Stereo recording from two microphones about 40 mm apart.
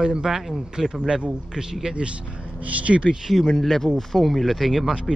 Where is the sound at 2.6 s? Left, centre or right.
Right.